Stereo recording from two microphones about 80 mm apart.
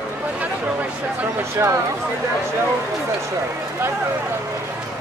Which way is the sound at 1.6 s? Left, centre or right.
Right.